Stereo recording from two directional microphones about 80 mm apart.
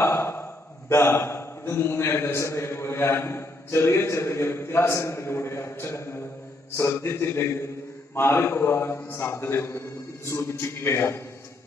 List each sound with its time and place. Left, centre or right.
0.0 s a man's voice: left